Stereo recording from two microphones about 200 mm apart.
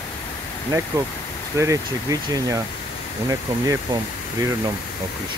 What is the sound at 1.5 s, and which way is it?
Speech, 15° right (ahead or behind).